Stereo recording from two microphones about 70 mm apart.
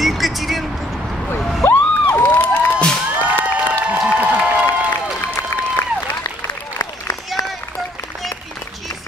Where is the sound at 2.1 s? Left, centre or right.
Left.